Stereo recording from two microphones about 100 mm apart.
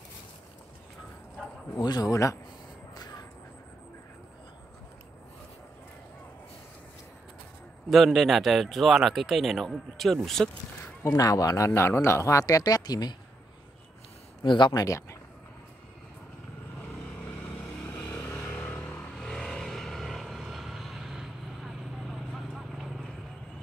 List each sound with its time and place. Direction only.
1.8 s a man's voice: 40° left (ahead or behind)
2.9 s a sound: 40° left (ahead or behind)
7.9 s a man's voice: centre (ahead or behind)
11.1 s a man's voice: 35° left (ahead or behind)
14.4 s speech: 55° left (ahead or behind)
14.7 s a man's voice: 35° left (ahead or behind)
17.4 s vehicle: 15° left (ahead or behind)
19.1 s vehicle: 5° left (ahead or behind)